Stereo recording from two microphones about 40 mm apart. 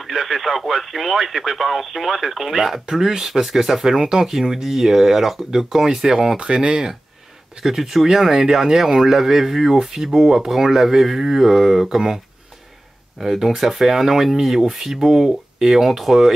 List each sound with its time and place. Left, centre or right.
0.0 s speech: centre
6.3 s speech: right
7.5 s speech: centre
13.2 s speech: centre